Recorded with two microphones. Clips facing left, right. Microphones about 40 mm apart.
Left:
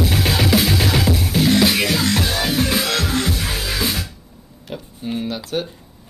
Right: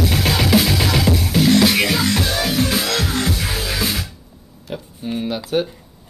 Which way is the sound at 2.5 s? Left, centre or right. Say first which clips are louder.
Even; left.